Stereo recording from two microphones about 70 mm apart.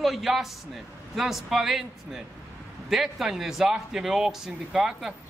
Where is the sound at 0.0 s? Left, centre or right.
Centre.